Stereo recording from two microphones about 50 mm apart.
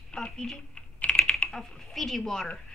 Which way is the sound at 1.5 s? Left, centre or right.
Centre.